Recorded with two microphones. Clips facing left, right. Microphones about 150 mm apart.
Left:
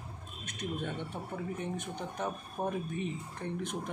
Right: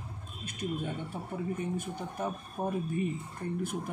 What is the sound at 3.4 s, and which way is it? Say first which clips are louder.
Speech: right 2 dB; 70° left (ahead or behind).